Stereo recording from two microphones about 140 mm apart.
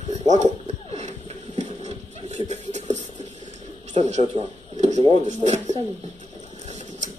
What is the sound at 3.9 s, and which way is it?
Speech, 55° right (ahead or behind).